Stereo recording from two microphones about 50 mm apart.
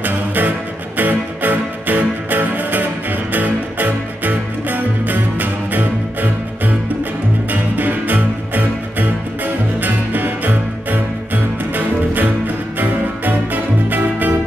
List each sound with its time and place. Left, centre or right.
0.0 s music: right